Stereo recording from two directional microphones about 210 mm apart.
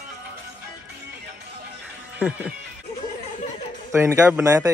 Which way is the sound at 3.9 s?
10° right (ahead or behind).